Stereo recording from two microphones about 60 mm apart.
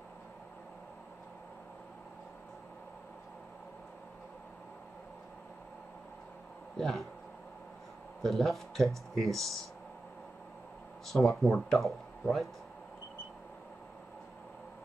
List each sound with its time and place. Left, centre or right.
6.8 s speech: centre
8.2 s speech: centre
11.1 s speech: centre